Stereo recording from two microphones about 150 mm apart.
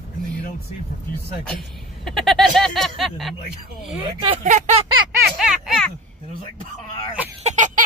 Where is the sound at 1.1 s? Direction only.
5° left (ahead or behind).